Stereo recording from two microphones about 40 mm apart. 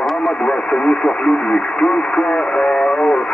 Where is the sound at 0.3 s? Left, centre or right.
Left.